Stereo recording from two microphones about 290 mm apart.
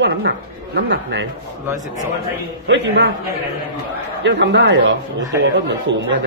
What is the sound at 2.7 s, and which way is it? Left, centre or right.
Speech, right.